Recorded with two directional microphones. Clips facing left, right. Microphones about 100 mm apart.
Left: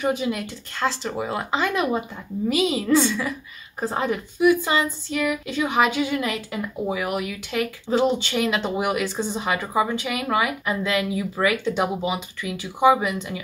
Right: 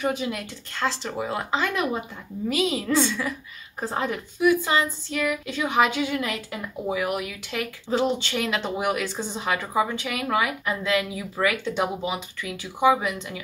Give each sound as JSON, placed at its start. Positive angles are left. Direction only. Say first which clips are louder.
{"t": 0.0, "sound": "speech", "louder": "left 3 dB", "side_deg": 5}